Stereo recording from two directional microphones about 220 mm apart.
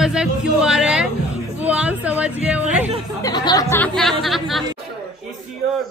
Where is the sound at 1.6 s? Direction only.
5° right (ahead or behind).